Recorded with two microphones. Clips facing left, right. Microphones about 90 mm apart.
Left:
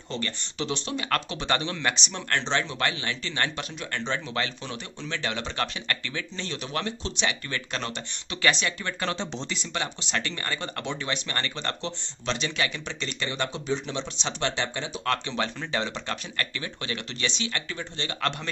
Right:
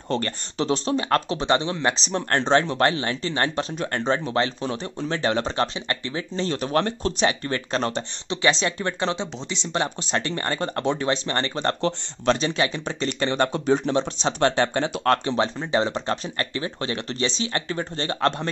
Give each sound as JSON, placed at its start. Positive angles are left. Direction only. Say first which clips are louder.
{"t": 0.1, "sound": "speech", "louder": "right 7 dB", "side_deg": -40}
{"t": 15.3, "sound": "speech", "louder": "right 7 dB", "side_deg": -30}